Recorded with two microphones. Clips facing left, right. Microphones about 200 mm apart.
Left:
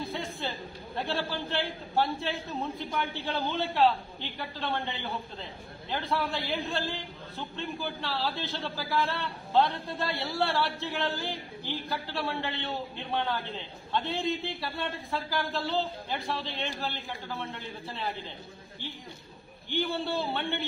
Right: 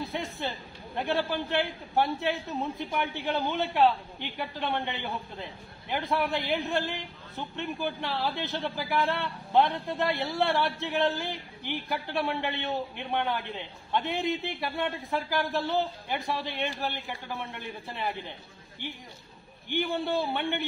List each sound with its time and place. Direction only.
0.1 s a sound: 20° right (ahead or behind)
0.9 s a man's voice: 15° right (ahead or behind)
3.4 s a man's voice: 15° right (ahead or behind)
5.9 s a man's voice: 15° right (ahead or behind)
19.7 s a man's voice: 15° right (ahead or behind)